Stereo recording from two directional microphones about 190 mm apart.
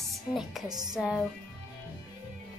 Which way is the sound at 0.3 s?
Centre (ahead or behind).